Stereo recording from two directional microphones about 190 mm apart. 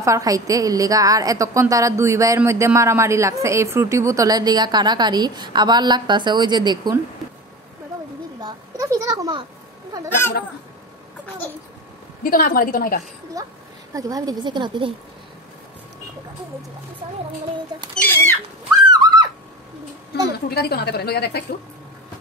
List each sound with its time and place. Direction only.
0.0 s a woman's voice: 15° right (ahead or behind)
8.4 s a sound: 20° right (ahead or behind)
10.0 s speech: 10° left (ahead or behind)
12.2 s a woman's voice: 50° left (ahead or behind)
13.4 s a woman's voice: 20° right (ahead or behind)
17.9 s speech: 10° left (ahead or behind)
18.9 s a sound: 25° right (ahead or behind)
20.3 s a woman's voice: 55° left (ahead or behind)